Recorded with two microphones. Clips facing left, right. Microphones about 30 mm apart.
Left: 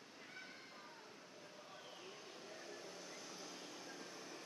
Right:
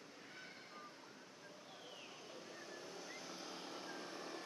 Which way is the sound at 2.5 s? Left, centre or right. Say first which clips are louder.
Left 1 dB; centre.